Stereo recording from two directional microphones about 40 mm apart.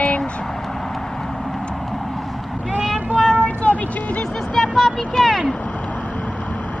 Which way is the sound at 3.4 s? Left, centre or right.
Left.